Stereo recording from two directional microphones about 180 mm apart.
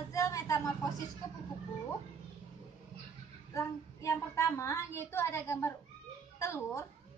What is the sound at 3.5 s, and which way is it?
A woman's voice, 15° left (ahead or behind).